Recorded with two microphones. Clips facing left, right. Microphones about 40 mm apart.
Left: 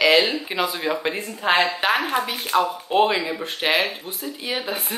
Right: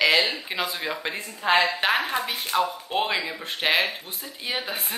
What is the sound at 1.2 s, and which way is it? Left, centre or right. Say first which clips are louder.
Speech: right 1 dB; left.